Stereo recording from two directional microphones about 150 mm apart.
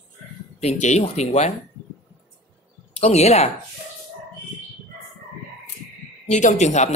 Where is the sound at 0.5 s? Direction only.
50° left (ahead or behind).